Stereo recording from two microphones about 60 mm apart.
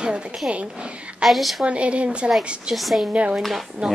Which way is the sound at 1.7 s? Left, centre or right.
Centre.